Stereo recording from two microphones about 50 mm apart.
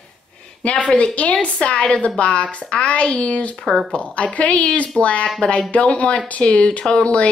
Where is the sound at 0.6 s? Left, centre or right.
Left.